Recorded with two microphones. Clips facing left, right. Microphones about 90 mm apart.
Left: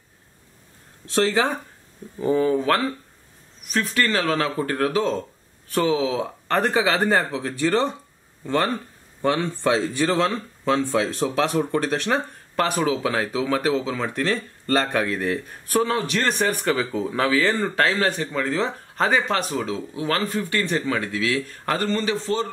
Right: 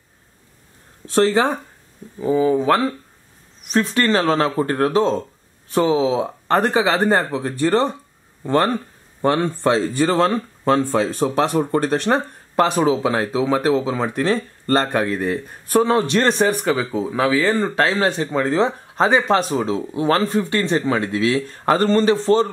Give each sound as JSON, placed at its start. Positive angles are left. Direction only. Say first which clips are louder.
{"t": 1.1, "sound": "speech", "louder": "right 5 dB", "side_deg": -35}
{"t": 2.1, "sound": "speech", "louder": "right 3 dB", "side_deg": -5}
{"t": 3.7, "sound": "speech", "louder": "right 5 dB", "side_deg": -25}
{"t": 7.1, "sound": "speech", "louder": "right 3 dB", "side_deg": -35}
{"t": 15.1, "sound": "speech", "louder": "right 3 dB", "side_deg": -5}
{"t": 15.7, "sound": "speech", "louder": "right 6 dB", "side_deg": -20}
{"t": 16.6, "sound": "speech", "louder": "right 3 dB", "side_deg": -5}
{"t": 21.8, "sound": "speech", "louder": "right 9 dB", "side_deg": -40}